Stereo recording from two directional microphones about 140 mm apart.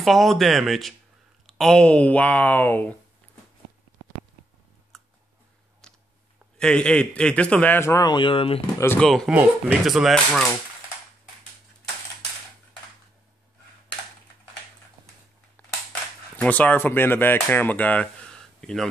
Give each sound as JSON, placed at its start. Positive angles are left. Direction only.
{"t": 0.0, "sound": "a man's voice", "side_deg": 0}
{"t": 4.9, "sound": "a sound", "side_deg": 5}
{"t": 6.6, "sound": "a man's voice", "side_deg": 5}
{"t": 8.7, "sound": "a man's voice", "side_deg": 15}
{"t": 9.0, "sound": "speech", "side_deg": 5}
{"t": 9.3, "sound": "speech", "side_deg": -10}
{"t": 16.3, "sound": "speech", "side_deg": 10}